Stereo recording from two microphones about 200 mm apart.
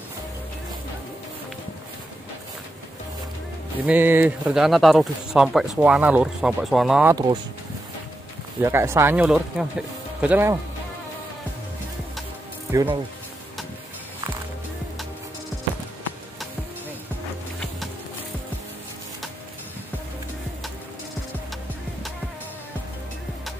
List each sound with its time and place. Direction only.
3.8 s speech: 10° right (ahead or behind)
8.5 s speech: 10° right (ahead or behind)
12.7 s speech: 15° right (ahead or behind)